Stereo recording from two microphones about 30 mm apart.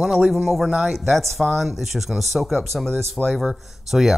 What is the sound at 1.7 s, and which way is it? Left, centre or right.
Speech, centre.